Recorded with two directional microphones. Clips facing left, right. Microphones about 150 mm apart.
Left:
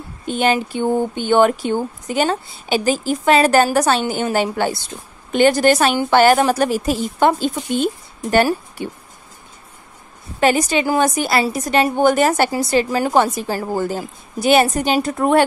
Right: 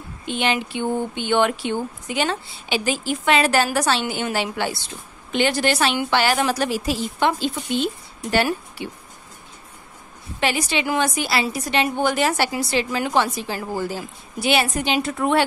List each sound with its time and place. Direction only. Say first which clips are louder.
0.2 s a woman's voice: left 5 dB; 45° left (ahead or behind)
10.4 s a woman's voice: left 7 dB; 45° left (ahead or behind)